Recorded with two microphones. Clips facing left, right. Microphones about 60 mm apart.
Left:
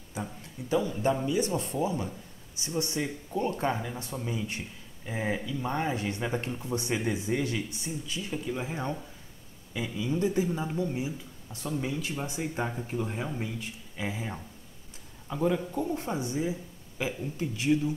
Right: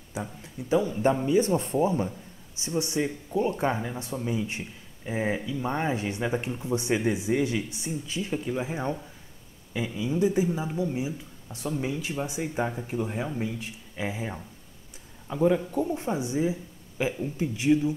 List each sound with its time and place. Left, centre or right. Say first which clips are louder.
0.4 s speech: right 4 dB; right
2.6 s speech: right 4 dB; right
5.7 s speech: right 2 dB; right
9.9 s a man's voice: right 3 dB; centre
13.6 s speech: right 2 dB; centre